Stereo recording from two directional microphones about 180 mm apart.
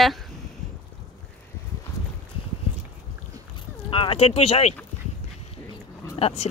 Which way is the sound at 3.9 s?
30° left (ahead or behind).